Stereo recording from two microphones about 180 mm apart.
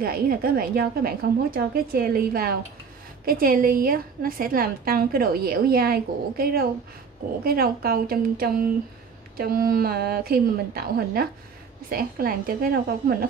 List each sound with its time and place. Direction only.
0.0 s a woman's voice: 55° right (ahead or behind)